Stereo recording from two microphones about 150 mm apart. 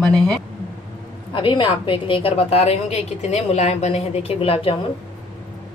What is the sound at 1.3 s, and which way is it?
A woman's voice, 30° left (ahead or behind).